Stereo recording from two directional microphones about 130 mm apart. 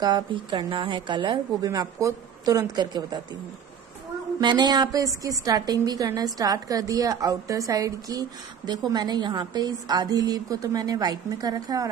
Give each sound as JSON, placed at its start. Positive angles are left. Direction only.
{"t": 0.0, "sound": "a woman's voice", "side_deg": -35}
{"t": 4.4, "sound": "a woman's voice", "side_deg": -35}